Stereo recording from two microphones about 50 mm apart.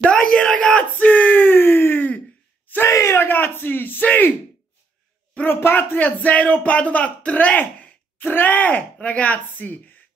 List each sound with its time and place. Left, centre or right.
0.0 s yell: centre
0.9 s a sound: left
4.0 s speech: left
5.5 s speech: left
5.9 s speech: left
8.9 s speech: left